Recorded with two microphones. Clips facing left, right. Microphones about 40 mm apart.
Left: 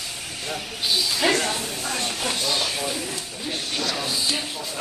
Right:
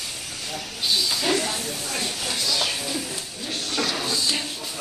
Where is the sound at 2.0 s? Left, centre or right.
Left.